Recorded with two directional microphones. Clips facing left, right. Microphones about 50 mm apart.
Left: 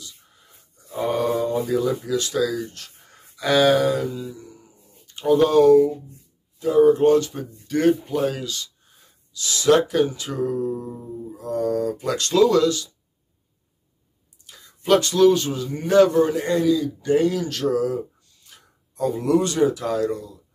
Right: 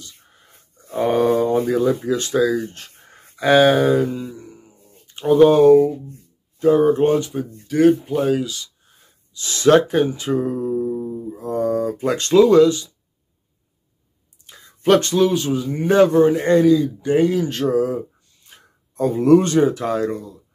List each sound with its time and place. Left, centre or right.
0.0 s a sound: right
3.3 s speech: right
5.8 s speech: right
7.2 s speech: centre
9.3 s speech: right
11.1 s speech: right
14.4 s a sound: right
15.1 s speech: centre
15.8 s speech: right
16.4 s a man's voice: right
17.0 s speech: right